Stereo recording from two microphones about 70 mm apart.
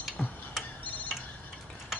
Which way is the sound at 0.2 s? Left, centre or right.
Centre.